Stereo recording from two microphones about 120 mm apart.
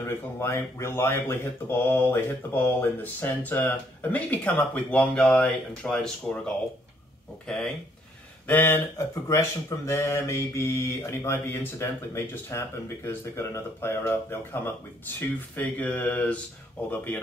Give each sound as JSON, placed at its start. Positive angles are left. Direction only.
{"t": 0.0, "sound": "speech", "side_deg": 20}
{"t": 8.5, "sound": "speech", "side_deg": 20}